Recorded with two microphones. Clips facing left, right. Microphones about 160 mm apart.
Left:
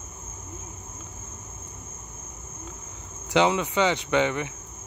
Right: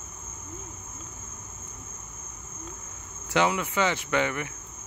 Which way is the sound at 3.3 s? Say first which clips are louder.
Left 3 dB; 15° left (ahead or behind).